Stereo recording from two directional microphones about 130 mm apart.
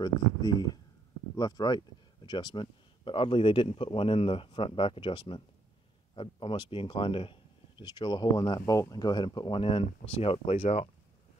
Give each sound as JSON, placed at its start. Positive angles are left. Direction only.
{"t": 0.0, "sound": "speech", "side_deg": 30}